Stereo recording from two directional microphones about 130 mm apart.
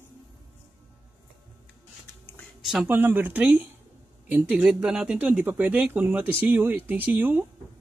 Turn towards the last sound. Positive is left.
turn(degrees=-15)  # may be behind; listen again after turning